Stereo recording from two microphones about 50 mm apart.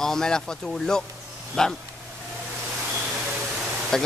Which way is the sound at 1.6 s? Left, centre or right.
Centre.